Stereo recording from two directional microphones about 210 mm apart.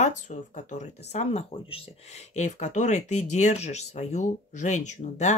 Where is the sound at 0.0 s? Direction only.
35° left (ahead or behind).